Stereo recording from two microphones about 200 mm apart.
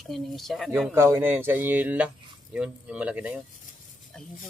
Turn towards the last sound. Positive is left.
turn(degrees=-5)  # may be behind; listen again after turning